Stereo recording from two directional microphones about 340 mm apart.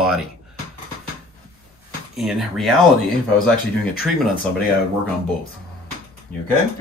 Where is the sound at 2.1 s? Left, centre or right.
Centre.